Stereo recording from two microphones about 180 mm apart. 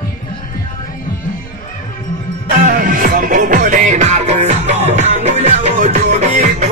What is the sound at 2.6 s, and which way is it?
Music, 50° right (ahead or behind).